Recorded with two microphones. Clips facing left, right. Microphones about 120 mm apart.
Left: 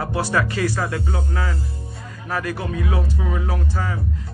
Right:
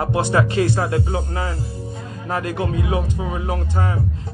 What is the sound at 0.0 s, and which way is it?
Music, 20° right (ahead or behind).